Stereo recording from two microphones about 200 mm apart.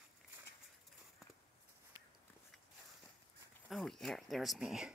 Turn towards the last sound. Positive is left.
turn(degrees=-5)  # may be behind; listen again after turning